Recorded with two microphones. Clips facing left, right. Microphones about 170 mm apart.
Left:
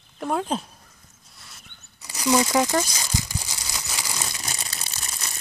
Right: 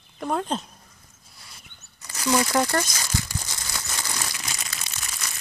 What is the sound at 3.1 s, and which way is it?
Crumpling, 20° left (ahead or behind).